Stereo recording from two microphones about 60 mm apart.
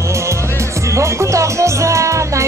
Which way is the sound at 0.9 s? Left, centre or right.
Right.